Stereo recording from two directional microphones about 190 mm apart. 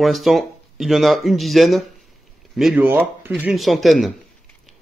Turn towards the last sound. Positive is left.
turn(degrees=0)  # may be behind; listen again after turning